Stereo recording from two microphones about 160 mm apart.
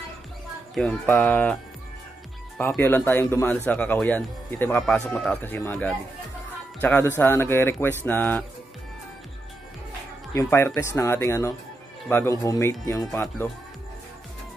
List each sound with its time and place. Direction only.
0.7 s speech: 10° left (ahead or behind)
2.6 s speech: 10° left (ahead or behind)
10.3 s speech: 15° left (ahead or behind)